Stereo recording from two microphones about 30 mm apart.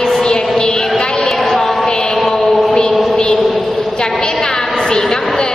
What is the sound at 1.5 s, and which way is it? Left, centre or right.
Mantra, centre.